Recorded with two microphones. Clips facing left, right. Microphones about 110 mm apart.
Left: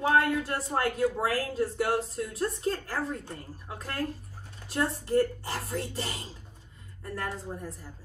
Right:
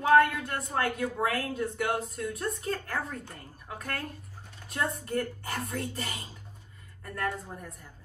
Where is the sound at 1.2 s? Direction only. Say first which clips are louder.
Left 1 dB; 35° left (ahead or behind).